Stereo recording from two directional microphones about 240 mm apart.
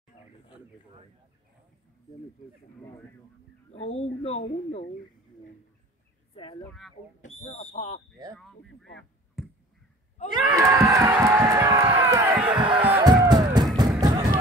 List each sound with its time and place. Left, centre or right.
3.9 s speech: left
7.4 s speech: left
8.6 s a sound: left
10.3 s speech: centre
12.4 s a sound: centre
12.9 s music: centre